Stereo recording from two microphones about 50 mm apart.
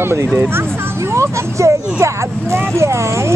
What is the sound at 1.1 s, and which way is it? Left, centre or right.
Speech, right.